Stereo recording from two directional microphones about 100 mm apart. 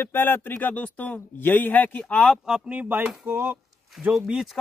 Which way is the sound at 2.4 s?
10° right (ahead or behind).